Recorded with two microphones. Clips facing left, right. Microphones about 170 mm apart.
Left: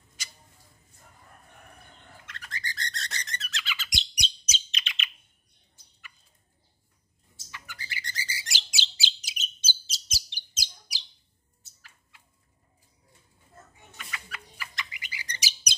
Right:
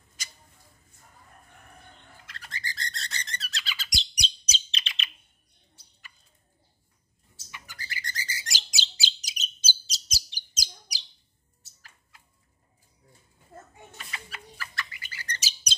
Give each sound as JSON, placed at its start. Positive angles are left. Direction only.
{"t": 2.2, "sound": "bird", "side_deg": -30}
{"t": 7.6, "sound": "bird", "side_deg": -45}
{"t": 13.9, "sound": "chicken", "side_deg": -30}
{"t": 14.6, "sound": "bird", "side_deg": 15}